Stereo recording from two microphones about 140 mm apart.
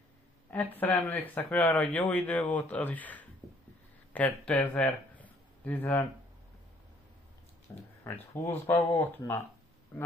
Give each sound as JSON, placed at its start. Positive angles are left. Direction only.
{"t": 0.7, "sound": "speech", "side_deg": 15}
{"t": 8.0, "sound": "speech", "side_deg": 15}